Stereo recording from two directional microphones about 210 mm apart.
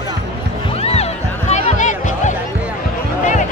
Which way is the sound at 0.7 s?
30° left (ahead or behind).